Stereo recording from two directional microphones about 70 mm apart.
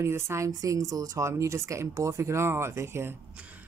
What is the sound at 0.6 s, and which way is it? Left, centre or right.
Speech, right.